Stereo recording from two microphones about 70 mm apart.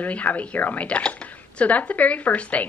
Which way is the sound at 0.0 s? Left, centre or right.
Left.